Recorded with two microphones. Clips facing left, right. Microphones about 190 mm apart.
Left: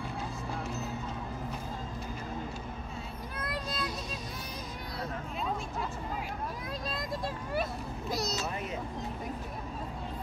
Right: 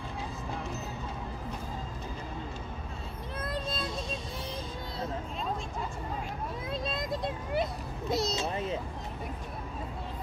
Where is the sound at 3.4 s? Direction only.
25° right (ahead or behind).